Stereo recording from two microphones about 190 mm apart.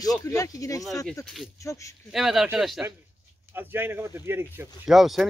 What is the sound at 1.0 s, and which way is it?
Speech, 5° left (ahead or behind).